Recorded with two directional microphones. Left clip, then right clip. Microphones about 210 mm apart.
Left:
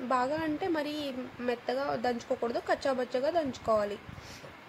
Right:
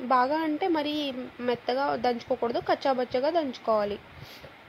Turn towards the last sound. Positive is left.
turn(degrees=-15)  # may be behind; listen again after turning